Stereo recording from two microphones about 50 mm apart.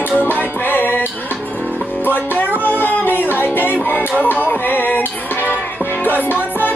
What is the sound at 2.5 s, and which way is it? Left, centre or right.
Music, left.